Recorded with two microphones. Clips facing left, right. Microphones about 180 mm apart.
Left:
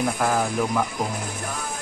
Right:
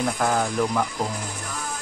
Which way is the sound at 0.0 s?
5° left (ahead or behind).